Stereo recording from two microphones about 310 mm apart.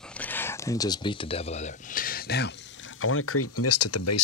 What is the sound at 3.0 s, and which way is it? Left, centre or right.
Speech, left.